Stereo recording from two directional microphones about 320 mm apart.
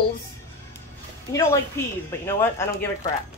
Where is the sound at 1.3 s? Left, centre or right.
Centre.